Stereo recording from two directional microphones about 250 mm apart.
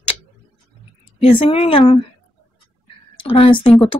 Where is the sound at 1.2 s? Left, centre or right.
Left.